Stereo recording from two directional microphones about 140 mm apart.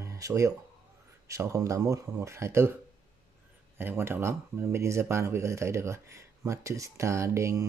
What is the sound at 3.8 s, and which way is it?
Speech, 15° right (ahead or behind).